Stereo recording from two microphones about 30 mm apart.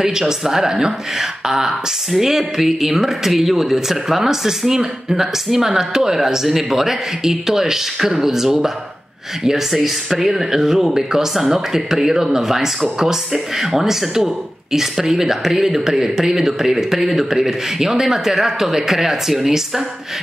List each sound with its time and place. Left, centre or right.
0.2 s speech: centre
6.4 s speech: centre